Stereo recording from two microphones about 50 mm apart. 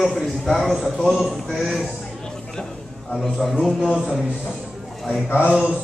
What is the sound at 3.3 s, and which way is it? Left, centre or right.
Speech, centre.